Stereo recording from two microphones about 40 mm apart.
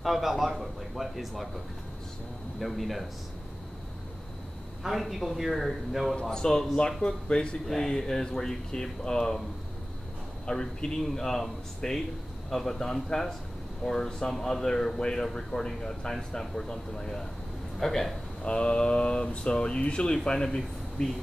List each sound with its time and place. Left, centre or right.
0.0 s a man's voice: centre
2.6 s a man's voice: centre
4.8 s a man's voice: centre
6.2 s speech: centre
7.6 s speech: centre
10.4 s speech: centre
18.4 s speech: left
20.4 s speech: centre